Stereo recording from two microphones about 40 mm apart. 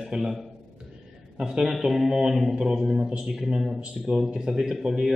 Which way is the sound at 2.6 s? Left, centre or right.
Centre.